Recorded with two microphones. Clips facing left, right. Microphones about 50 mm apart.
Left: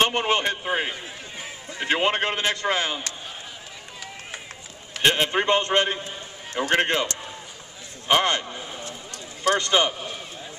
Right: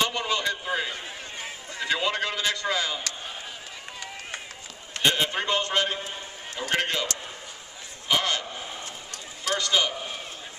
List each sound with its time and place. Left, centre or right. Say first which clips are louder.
0.0 s a man's voice: left 5 dB; left
5.0 s a man's voice: left 4 dB; left
8.1 s a sound: left 5 dB; left